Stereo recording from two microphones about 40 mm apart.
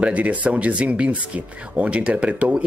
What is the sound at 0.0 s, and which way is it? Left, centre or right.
Speech, right.